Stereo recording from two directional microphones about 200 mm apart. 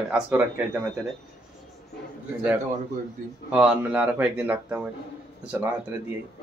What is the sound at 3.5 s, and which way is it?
Speech, 5° right (ahead or behind).